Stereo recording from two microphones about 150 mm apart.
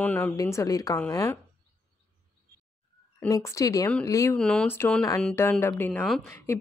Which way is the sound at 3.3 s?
20° left (ahead or behind).